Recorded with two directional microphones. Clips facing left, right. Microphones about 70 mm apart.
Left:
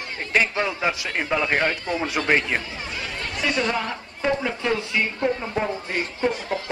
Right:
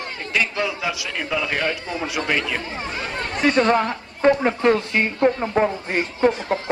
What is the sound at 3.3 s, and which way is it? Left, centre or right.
Speech, right.